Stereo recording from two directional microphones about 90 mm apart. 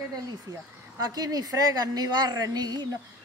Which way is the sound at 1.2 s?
45° right (ahead or behind).